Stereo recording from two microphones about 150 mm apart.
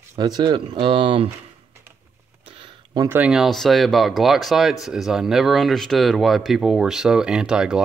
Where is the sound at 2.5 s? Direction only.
35° right (ahead or behind).